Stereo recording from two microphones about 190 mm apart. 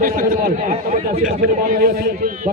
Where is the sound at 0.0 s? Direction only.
50° right (ahead or behind).